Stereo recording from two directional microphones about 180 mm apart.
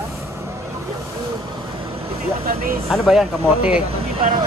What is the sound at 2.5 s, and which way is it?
Speech, 55° right (ahead or behind).